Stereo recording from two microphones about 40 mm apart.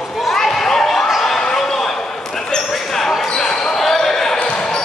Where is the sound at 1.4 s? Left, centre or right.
Centre.